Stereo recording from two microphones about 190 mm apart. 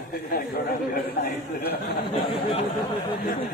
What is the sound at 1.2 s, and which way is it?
Speech, 55° left (ahead or behind).